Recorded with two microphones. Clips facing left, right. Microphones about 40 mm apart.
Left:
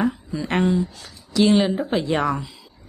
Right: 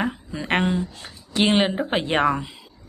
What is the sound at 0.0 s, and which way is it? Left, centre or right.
A woman's voice, right.